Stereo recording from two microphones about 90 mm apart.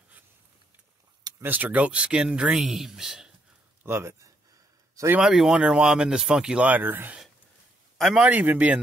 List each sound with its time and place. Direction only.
1.4 s speech: 20° right (ahead or behind)
3.8 s speech: 25° right (ahead or behind)
5.2 s speech: 5° right (ahead or behind); by 7.2 s 20° right (ahead or behind)
8.0 s speech: 10° right (ahead or behind)